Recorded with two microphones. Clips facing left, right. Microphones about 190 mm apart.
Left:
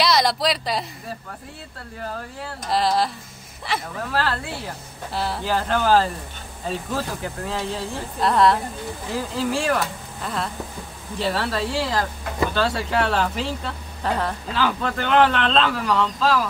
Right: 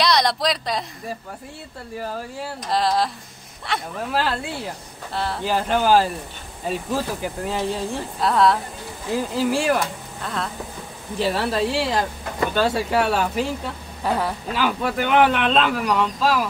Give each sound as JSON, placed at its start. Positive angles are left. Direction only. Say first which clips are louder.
{"t": 0.0, "sound": "speech", "louder": "even", "side_deg": 0}
{"t": 2.0, "sound": "speech", "louder": "right 3 dB", "side_deg": -10}
{"t": 4.1, "sound": "speech", "louder": "right 1 dB", "side_deg": -15}
{"t": 5.1, "sound": "speech", "louder": "even", "side_deg": 0}
{"t": 5.4, "sound": "speech", "louder": "right 2 dB", "side_deg": -15}
{"t": 8.2, "sound": "speech", "louder": "left 1 dB", "side_deg": 0}
{"t": 10.2, "sound": "speech", "louder": "even", "side_deg": 5}
{"t": 11.1, "sound": "speech", "louder": "right 2 dB", "side_deg": -15}